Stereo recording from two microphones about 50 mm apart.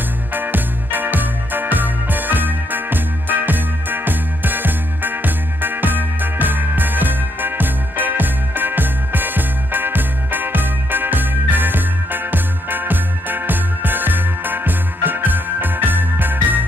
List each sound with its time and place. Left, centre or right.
0.3 s music: right